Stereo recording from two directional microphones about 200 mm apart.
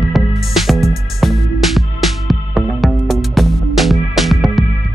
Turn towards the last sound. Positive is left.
turn(degrees=0)  # may be behind; listen again after turning